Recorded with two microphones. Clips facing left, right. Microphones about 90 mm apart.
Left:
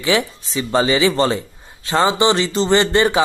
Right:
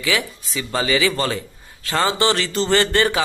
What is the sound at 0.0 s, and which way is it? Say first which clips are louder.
A man's voice: left 4 dB; 30° left (ahead or behind).